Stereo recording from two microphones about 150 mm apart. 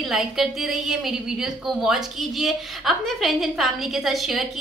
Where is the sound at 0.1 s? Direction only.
Centre (ahead or behind).